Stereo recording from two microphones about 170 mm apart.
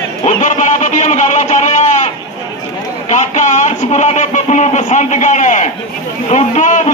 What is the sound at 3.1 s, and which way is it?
A man's voice, 45° left (ahead or behind).